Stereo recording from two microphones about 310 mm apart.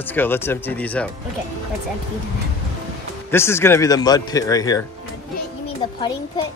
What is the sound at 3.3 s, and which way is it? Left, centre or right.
Speech, centre.